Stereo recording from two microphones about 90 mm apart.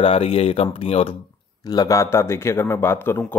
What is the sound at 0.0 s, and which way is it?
Speech, 90° left.